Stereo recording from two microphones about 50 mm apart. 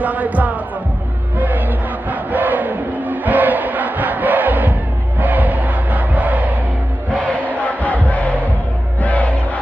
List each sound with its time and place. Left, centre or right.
0.0 s music: right
2.0 s crowd: right
7.6 s crowd: left